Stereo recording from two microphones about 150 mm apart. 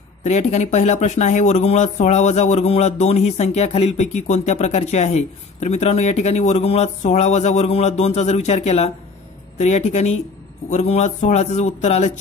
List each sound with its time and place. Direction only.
0.2 s speech: 50° left (ahead or behind)